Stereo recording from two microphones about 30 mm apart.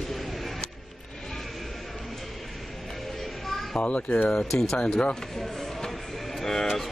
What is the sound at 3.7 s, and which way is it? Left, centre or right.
Speech, left.